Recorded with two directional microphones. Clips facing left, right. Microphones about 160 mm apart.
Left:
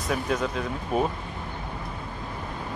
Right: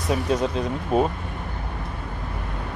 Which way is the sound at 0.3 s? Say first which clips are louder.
Right 4 dB; 35° right (ahead or behind).